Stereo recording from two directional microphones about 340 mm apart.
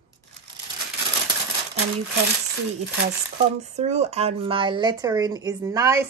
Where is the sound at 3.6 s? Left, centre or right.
Centre.